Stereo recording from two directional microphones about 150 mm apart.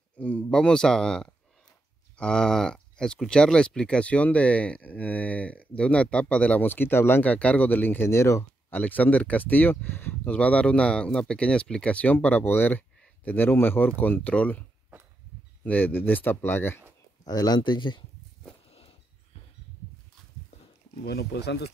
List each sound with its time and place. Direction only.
0.2 s speech: 10° left (ahead or behind)
15.6 s speech: 10° left (ahead or behind)
17.2 s speech: 25° left (ahead or behind)
21.0 s speech: 90° left